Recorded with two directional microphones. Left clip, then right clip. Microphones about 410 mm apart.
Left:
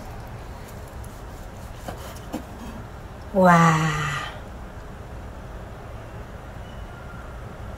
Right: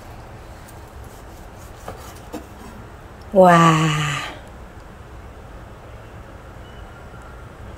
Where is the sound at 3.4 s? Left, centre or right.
Right.